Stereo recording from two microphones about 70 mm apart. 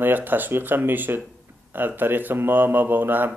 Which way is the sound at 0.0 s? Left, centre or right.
Right.